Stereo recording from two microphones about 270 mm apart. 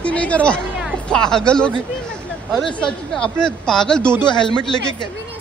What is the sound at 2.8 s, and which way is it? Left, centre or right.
A man's voice, centre.